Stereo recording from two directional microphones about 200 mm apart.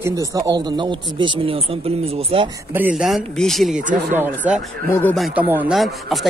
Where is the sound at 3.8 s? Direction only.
40° right (ahead or behind).